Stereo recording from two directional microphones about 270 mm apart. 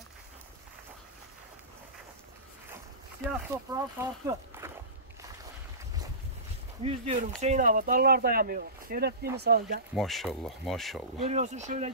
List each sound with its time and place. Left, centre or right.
3.3 s speech: centre
6.8 s speech: right
9.9 s speech: centre
11.2 s speech: right